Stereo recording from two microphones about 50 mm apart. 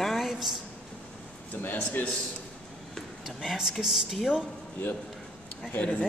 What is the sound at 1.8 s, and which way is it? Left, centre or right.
Speech, left.